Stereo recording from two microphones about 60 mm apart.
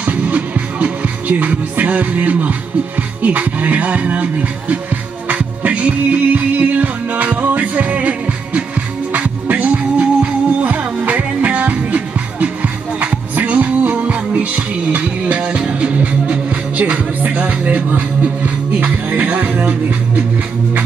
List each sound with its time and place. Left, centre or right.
0.0 s music: right
3.2 s speech: right
5.3 s music: right